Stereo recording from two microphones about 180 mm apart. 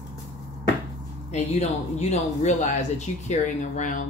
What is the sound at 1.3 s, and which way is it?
Speech, 40° left (ahead or behind).